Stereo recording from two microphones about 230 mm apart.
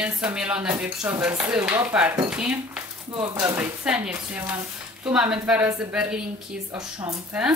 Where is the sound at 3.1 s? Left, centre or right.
Right.